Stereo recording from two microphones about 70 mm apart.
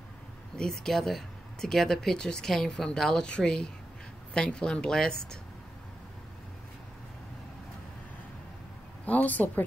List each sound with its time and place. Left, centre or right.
0.6 s speech: centre
9.0 s a woman's voice: left